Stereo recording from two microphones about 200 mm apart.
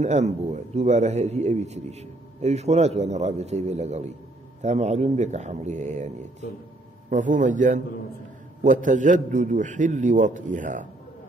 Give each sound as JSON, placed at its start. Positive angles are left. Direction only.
{"t": 0.0, "sound": "a man's voice", "side_deg": -35}